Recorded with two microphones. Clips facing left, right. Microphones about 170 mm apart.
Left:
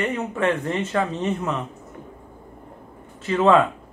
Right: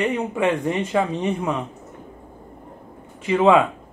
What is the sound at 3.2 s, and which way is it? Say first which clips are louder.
Speech: right 1 dB; 10° right (ahead or behind).